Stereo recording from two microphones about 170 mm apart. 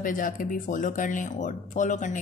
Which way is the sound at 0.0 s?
50° left (ahead or behind).